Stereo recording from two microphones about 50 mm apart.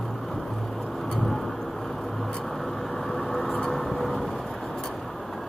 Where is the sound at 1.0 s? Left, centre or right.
Centre.